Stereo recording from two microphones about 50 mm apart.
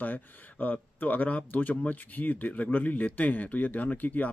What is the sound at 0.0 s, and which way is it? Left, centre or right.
Speech, left.